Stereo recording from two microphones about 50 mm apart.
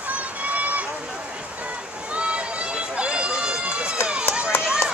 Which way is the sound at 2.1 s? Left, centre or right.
Right.